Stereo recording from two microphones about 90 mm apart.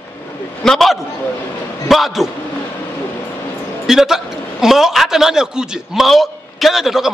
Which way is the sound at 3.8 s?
5° right (ahead or behind).